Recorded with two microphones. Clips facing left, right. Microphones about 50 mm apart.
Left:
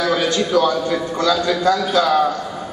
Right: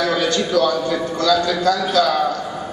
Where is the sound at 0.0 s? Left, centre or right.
Centre.